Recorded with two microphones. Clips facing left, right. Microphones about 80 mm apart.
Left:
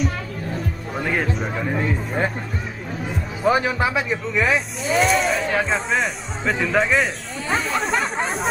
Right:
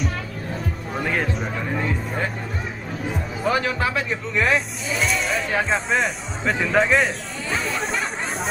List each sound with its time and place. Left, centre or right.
0.9 s music: centre
3.5 s a man's voice: centre
4.3 s speech: centre
7.8 s a sound: centre